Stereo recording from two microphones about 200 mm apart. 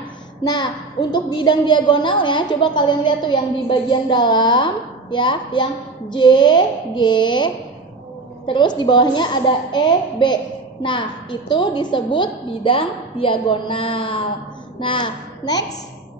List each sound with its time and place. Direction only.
0.4 s a woman's voice: 20° left (ahead or behind)